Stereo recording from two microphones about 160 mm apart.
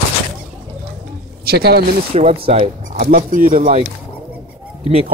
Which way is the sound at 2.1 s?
40° right (ahead or behind).